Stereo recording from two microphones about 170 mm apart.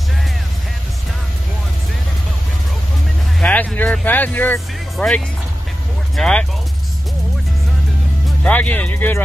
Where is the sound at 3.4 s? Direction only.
10° left (ahead or behind).